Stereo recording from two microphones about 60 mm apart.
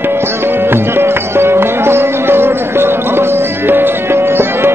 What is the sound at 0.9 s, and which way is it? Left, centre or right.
Music, right.